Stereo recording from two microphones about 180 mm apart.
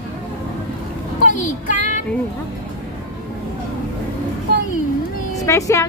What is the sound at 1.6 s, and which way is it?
Music, 45° left (ahead or behind).